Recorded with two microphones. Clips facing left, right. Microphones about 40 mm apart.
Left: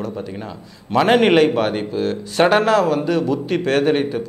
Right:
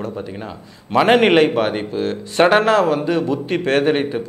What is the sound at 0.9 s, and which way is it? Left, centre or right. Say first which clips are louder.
A man's voice: right 1 dB; centre.